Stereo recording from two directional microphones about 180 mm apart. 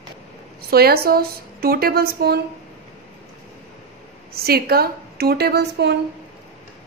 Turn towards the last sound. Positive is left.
turn(degrees=-65)  # may be behind; listen again after turning